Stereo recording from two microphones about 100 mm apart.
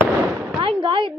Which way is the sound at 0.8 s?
55° right (ahead or behind).